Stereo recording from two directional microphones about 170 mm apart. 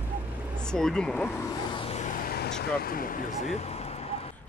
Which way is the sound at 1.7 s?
30° left (ahead or behind).